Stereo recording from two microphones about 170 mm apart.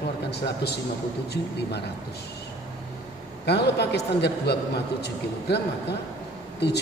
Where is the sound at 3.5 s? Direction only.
80° left.